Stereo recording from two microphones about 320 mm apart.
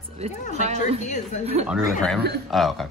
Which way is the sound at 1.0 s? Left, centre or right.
Left.